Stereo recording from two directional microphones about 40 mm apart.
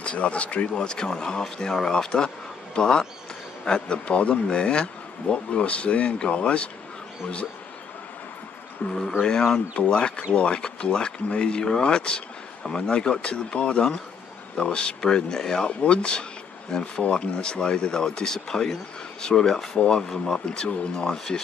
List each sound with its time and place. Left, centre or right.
0.0 s speech: left
8.8 s speech: left
9.2 s speech: centre
9.8 s speech: left
15.8 s speech: left